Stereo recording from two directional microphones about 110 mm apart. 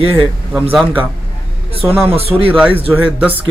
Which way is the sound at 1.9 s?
20° right (ahead or behind).